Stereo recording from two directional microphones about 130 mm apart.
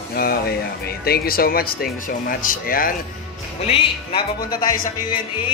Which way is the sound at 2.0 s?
90° left.